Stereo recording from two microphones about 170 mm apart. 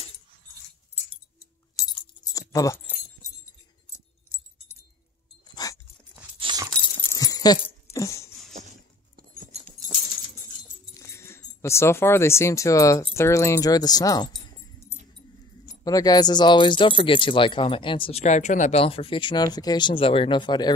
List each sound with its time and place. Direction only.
1.4 s music: 20° left (ahead or behind)
2.5 s keys jangling: 20° left (ahead or behind)
5.5 s dog: 20° left (ahead or behind)
6.4 s keys jangling: 25° right (ahead or behind)
7.0 s dog: 20° left (ahead or behind)
9.1 s a sound: 55° right (ahead or behind)
11.0 s speech: 15° left (ahead or behind)
18.2 s speech: 45° left (ahead or behind); by 20.7 s 25° left (ahead or behind)